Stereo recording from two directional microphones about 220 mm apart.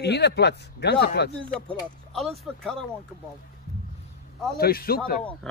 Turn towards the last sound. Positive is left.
turn(degrees=45)  # may be behind; listen again after turning